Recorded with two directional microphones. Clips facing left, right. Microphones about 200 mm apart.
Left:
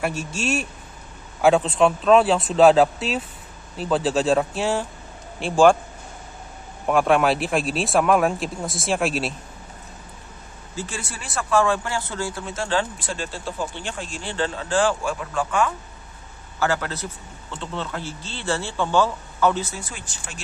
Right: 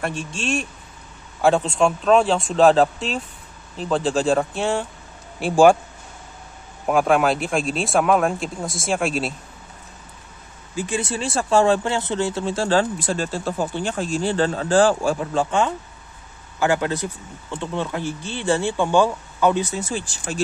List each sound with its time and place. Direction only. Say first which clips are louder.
0.0 s speech: left 1 dB; 5° left (ahead or behind)
6.9 s speech: right 1 dB; centre (ahead or behind)
10.8 s speech: right 8 dB; 20° right (ahead or behind)